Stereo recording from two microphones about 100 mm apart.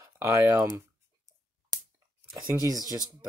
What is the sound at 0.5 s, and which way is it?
Speech, 35° right (ahead or behind).